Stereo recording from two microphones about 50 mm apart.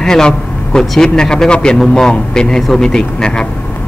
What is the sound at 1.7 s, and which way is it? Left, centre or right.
A man's voice, centre.